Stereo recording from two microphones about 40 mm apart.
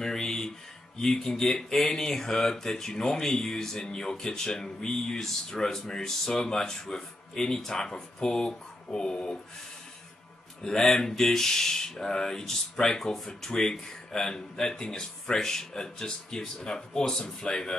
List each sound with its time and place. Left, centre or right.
0.0 s speech: centre
10.6 s speech: centre